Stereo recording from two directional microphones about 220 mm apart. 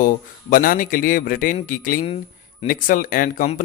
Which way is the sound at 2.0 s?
25° left (ahead or behind).